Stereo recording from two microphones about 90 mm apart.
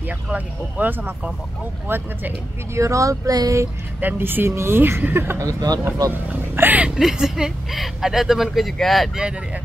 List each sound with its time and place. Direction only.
0.0 s speech: 20° right (ahead or behind)
2.8 s a sound: 35° right (ahead or behind)
4.0 s speech: 20° right (ahead or behind); by 5.8 s 40° right (ahead or behind)
6.2 s speech: 20° right (ahead or behind)
7.0 s speech: 5° right (ahead or behind)